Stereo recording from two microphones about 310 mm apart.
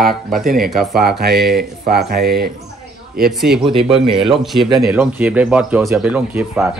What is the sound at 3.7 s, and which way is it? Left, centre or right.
Speech, centre.